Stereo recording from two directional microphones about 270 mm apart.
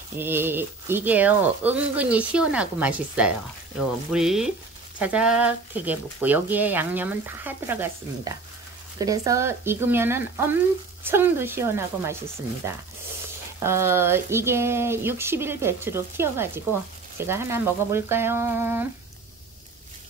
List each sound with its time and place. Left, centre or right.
0.2 s speech: centre
13.6 s speech: centre